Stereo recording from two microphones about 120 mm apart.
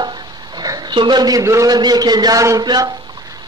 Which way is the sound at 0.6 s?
35° right (ahead or behind).